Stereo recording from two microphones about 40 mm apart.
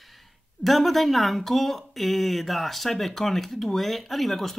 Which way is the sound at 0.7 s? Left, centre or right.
Centre.